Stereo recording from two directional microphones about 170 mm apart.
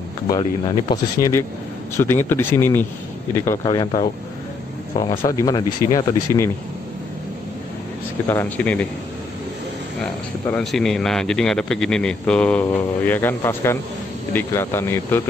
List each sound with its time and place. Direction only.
0.3 s speech: 25° left (ahead or behind)
3.6 s speech: 25° left (ahead or behind)
5.0 s speech: 30° left (ahead or behind)
5.4 s speech: 20° left (ahead or behind)
8.3 s speech: 10° left (ahead or behind)
10.5 s a man's voice: centre (ahead or behind)